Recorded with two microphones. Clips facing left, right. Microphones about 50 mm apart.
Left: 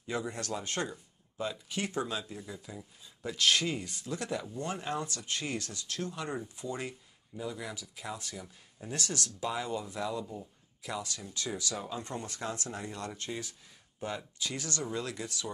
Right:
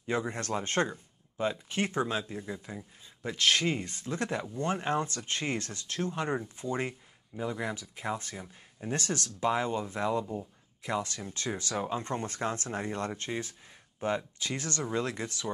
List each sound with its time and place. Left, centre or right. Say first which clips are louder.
0.0 s speech: right 4 dB; right